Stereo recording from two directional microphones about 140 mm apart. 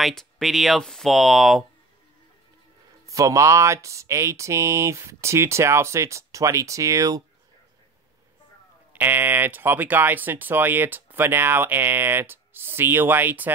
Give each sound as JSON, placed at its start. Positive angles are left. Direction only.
{"t": 0.0, "sound": "speech", "side_deg": 0}
{"t": 3.1, "sound": "speech", "side_deg": -25}
{"t": 8.9, "sound": "speech", "side_deg": -15}